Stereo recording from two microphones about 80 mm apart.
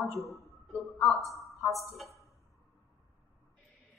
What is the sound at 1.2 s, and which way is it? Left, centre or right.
Speech, right.